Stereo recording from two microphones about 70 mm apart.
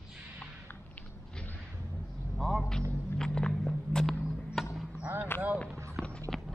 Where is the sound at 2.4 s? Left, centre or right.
Centre.